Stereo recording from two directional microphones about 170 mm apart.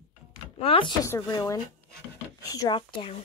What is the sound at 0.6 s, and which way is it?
Speech, 30° left (ahead or behind).